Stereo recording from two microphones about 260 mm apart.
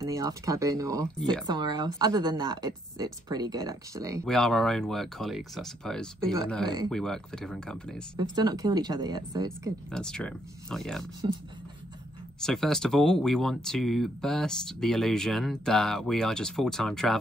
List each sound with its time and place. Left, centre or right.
0.0 s speech: centre
4.2 s speech: centre
6.6 s speech: centre
6.9 s speech: centre
8.2 s speech: centre
9.8 s speech: centre
12.4 s speech: centre